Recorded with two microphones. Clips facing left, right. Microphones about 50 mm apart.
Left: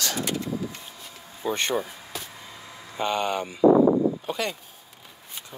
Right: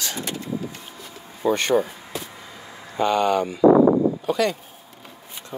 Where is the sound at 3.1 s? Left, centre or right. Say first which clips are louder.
Right 6 dB; centre.